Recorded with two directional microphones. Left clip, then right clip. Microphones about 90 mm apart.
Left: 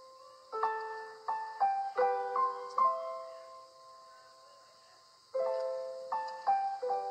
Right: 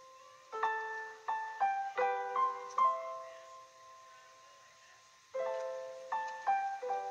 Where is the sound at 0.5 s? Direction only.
30° left (ahead or behind).